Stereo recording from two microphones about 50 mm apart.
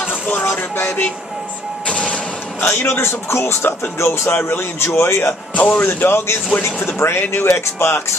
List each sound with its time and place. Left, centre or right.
0.0 s a sound: left
1.9 s printer: left
2.6 s speech: left
5.5 s a man's voice: left
5.9 s speech: left